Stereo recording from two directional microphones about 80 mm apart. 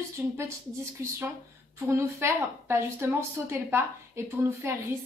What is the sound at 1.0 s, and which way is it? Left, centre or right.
A woman's voice, right.